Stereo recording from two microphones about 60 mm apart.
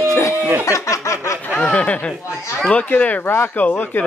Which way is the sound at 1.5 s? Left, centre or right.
Left.